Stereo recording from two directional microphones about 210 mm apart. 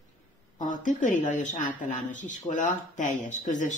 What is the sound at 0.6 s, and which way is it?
Speech, 40° left (ahead or behind).